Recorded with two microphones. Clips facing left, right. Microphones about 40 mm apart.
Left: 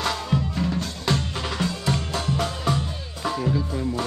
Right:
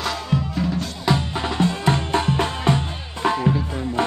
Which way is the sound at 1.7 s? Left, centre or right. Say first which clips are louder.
Right 6 dB; right.